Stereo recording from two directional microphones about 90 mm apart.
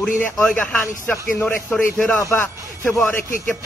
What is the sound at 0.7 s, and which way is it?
Speech, 15° left (ahead or behind).